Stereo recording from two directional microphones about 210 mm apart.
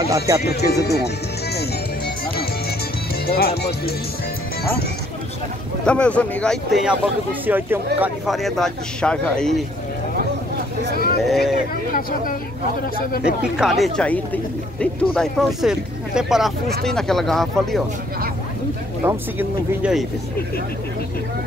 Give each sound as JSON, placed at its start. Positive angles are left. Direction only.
{"t": 0.7, "sound": "speech", "side_deg": 50}
{"t": 3.3, "sound": "speech", "side_deg": 45}
{"t": 5.9, "sound": "speech", "side_deg": 5}
{"t": 11.2, "sound": "speech", "side_deg": 0}
{"t": 13.2, "sound": "speech", "side_deg": -5}
{"t": 19.0, "sound": "speech", "side_deg": -5}